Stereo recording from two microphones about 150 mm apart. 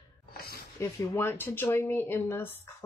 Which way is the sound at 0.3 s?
90° left.